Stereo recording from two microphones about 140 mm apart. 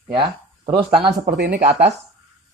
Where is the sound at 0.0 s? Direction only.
35° right (ahead or behind).